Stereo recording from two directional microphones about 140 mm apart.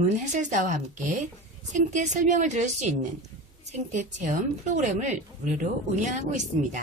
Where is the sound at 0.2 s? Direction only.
60° right (ahead or behind).